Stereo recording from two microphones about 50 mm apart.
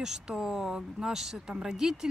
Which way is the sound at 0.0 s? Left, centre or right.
Centre.